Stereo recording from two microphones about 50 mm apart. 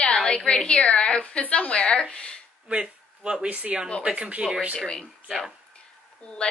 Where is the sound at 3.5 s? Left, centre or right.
Right.